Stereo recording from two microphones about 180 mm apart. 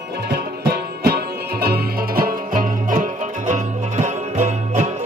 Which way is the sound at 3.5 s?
40° right (ahead or behind).